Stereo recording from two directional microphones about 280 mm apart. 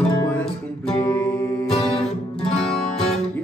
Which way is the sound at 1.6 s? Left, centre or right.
Left.